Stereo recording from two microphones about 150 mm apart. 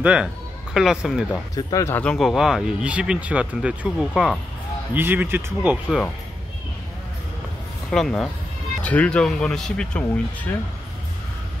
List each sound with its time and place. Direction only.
0.0 s speech: 5° right (ahead or behind)
1.5 s speech: 25° left (ahead or behind)
2.0 s speech: 5° left (ahead or behind)
4.9 s speech: 15° right (ahead or behind)
7.9 s speech: 5° left (ahead or behind)